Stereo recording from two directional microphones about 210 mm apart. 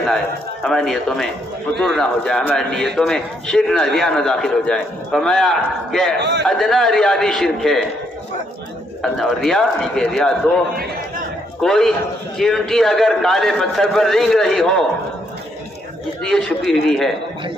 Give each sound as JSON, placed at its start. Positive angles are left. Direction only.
{"t": 0.7, "sound": "a man's voice", "side_deg": 0}
{"t": 6.1, "sound": "a man's voice", "side_deg": -55}
{"t": 6.4, "sound": "a man's voice", "side_deg": 0}
{"t": 9.0, "sound": "a man's voice", "side_deg": 0}
{"t": 11.6, "sound": "a man's voice", "side_deg": 0}
{"t": 16.3, "sound": "a man's voice", "side_deg": 0}